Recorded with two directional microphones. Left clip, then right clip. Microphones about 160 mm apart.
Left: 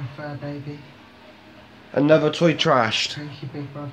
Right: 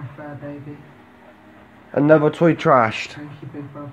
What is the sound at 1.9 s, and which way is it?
Speech, 15° right (ahead or behind).